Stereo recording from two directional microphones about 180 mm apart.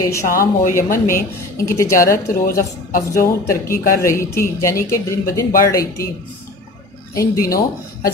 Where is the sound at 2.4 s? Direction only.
50° left (ahead or behind).